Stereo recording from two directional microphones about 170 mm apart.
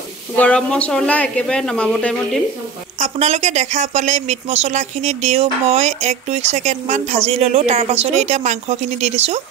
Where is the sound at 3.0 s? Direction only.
40° right (ahead or behind).